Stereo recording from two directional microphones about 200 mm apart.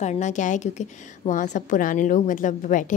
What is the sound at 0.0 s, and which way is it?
A woman's voice, 35° left (ahead or behind).